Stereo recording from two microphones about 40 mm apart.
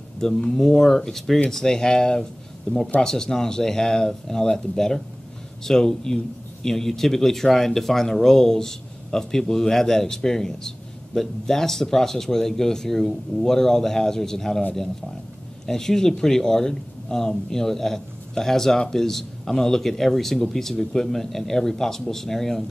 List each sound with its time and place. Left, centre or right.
0.4 s speech: centre
15.6 s speech: centre